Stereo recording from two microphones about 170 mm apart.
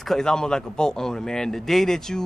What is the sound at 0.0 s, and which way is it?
Speech, 5° left (ahead or behind).